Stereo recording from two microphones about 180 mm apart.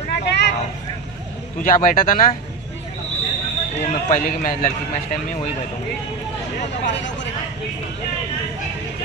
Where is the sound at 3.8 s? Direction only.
45° left (ahead or behind).